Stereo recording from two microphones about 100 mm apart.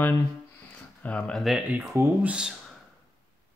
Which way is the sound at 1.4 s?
5° right (ahead or behind).